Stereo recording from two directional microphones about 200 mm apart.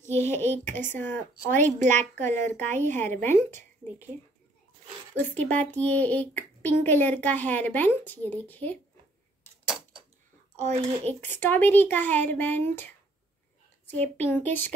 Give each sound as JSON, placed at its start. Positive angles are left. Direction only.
{"t": 0.1, "sound": "speech", "side_deg": 10}
{"t": 1.8, "sound": "speech", "side_deg": -35}
{"t": 2.8, "sound": "speech", "side_deg": 10}
{"t": 5.1, "sound": "speech", "side_deg": 5}
{"t": 10.5, "sound": "a sound", "side_deg": -35}
{"t": 11.1, "sound": "speech", "side_deg": 10}